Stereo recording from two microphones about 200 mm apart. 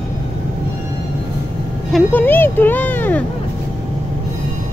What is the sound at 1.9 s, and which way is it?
Speech, 10° left (ahead or behind).